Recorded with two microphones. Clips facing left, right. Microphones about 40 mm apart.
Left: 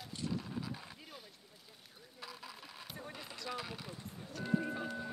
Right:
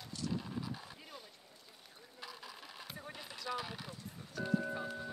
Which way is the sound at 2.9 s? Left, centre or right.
Centre.